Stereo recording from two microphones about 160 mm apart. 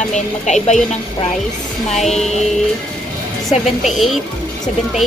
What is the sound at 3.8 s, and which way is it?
Speech, centre (ahead or behind).